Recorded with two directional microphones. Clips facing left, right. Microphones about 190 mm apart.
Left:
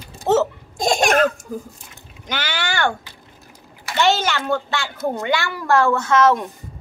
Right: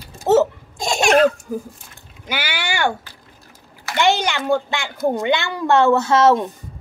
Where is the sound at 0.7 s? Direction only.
50° left (ahead or behind).